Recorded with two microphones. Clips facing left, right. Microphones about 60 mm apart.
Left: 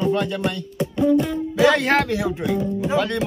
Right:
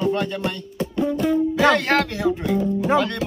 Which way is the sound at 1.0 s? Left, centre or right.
Centre.